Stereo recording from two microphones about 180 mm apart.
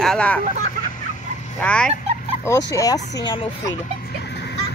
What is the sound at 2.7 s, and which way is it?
Speech, 20° left (ahead or behind).